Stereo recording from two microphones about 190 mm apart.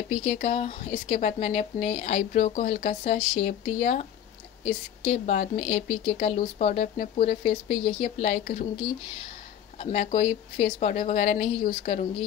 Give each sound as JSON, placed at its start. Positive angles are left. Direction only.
{"t": 0.1, "sound": "speech", "side_deg": 35}
{"t": 9.8, "sound": "speech", "side_deg": 35}